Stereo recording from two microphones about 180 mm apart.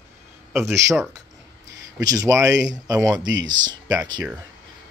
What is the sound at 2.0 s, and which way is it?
Speech, 20° right (ahead or behind).